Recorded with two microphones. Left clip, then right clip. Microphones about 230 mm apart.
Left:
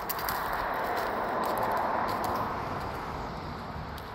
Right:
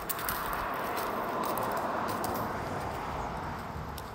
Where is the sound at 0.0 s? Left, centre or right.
Right.